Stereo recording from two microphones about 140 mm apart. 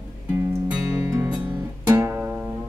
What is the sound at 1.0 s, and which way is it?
Music, 20° right (ahead or behind).